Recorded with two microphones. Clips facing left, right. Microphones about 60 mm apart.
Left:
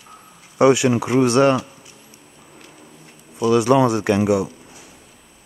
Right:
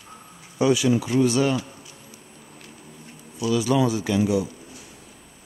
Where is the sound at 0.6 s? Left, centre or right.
Left.